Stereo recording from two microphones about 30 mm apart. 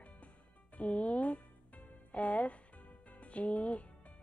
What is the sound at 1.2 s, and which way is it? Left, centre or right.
Music, left.